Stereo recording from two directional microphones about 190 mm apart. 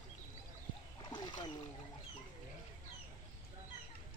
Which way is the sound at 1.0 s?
20° left (ahead or behind).